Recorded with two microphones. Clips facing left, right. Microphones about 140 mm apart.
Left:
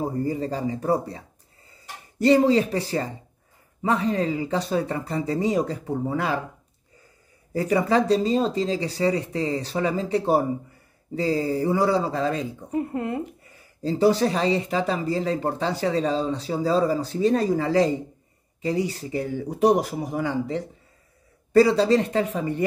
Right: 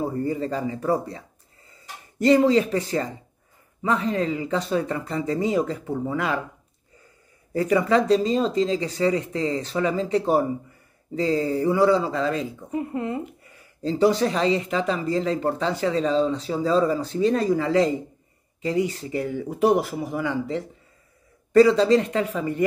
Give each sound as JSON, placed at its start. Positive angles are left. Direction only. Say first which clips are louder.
{"t": 0.1, "sound": "speech", "louder": "even", "side_deg": 35}
{"t": 7.5, "sound": "speech", "louder": "right 1 dB", "side_deg": 35}
{"t": 21.5, "sound": "speech", "louder": "right 2 dB", "side_deg": 35}